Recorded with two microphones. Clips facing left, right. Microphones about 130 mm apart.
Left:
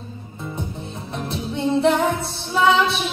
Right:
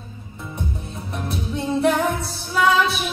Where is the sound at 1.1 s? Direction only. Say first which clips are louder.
Even; 25° left (ahead or behind).